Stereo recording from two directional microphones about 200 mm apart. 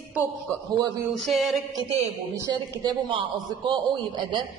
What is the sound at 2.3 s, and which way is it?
A man's voice, 15° right (ahead or behind).